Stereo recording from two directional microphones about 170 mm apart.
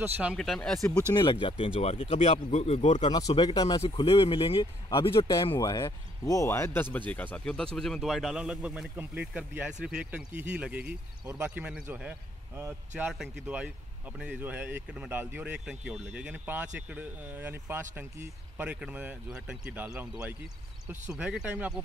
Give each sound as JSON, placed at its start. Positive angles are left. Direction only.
{"t": 0.0, "sound": "speech", "side_deg": -5}
{"t": 0.4, "sound": "speech", "side_deg": 5}
{"t": 1.1, "sound": "speech", "side_deg": 30}
{"t": 3.1, "sound": "speech", "side_deg": 25}